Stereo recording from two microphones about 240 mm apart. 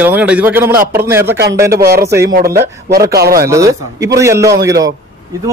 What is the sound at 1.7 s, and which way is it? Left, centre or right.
Speech, right.